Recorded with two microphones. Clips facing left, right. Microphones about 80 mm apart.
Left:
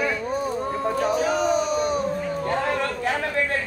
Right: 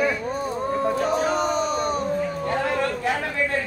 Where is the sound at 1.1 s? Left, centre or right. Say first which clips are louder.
Left 1 dB; right.